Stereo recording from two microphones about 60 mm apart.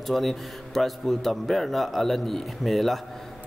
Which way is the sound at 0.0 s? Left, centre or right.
Centre.